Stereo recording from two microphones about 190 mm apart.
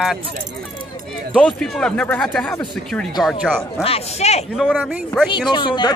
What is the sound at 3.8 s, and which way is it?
Speech, 35° left (ahead or behind).